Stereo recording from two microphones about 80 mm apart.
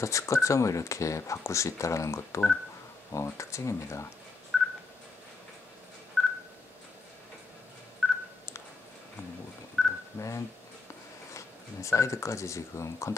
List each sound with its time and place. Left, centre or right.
0.0 s speech: left
4.5 s telephone dialing: centre
8.0 s telephone dialing: centre
9.8 s telephone dialing: centre
10.1 s speech: left
11.3 s speech: left